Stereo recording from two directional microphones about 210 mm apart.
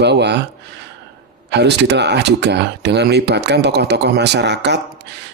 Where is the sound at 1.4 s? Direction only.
55° right (ahead or behind).